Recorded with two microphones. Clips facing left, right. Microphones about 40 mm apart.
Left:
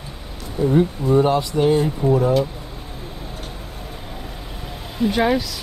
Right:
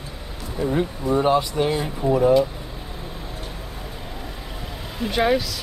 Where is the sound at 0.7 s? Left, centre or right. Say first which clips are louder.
Left 5 dB; centre.